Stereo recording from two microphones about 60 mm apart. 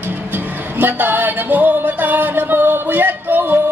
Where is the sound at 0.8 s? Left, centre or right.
Right.